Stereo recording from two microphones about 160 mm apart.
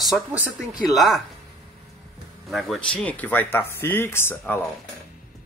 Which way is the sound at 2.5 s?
Centre (ahead or behind).